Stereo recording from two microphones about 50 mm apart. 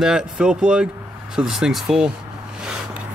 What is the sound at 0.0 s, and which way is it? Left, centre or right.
Speech, centre.